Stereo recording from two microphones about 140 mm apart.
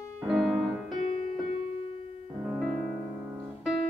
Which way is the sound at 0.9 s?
55° left (ahead or behind).